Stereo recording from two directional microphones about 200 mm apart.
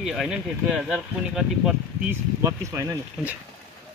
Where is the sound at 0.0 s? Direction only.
Centre (ahead or behind).